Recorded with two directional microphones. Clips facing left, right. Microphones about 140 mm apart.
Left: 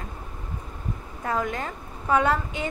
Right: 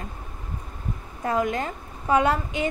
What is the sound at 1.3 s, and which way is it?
A woman's voice, 25° right (ahead or behind).